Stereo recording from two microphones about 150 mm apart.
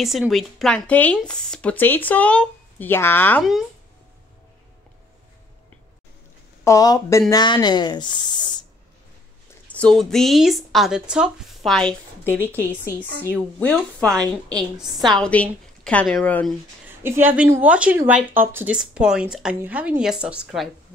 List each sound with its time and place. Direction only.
0.0 s speech: centre (ahead or behind)
6.6 s speech: 25° left (ahead or behind)
9.8 s speech: 5° left (ahead or behind)
12.4 s speech: 15° left (ahead or behind)
17.0 s speech: 15° right (ahead or behind)